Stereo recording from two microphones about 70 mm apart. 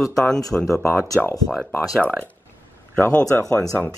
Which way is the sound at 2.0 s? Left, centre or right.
Left.